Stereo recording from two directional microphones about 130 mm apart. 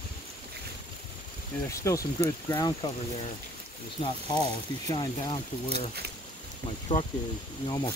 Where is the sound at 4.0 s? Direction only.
35° left (ahead or behind).